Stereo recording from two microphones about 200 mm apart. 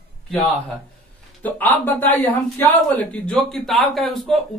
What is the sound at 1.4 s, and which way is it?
Speech, 10° left (ahead or behind).